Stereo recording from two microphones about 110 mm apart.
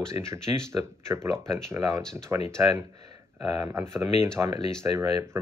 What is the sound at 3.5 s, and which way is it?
Speech, 30° right (ahead or behind).